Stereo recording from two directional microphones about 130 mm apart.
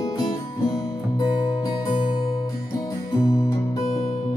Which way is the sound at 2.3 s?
30° left (ahead or behind).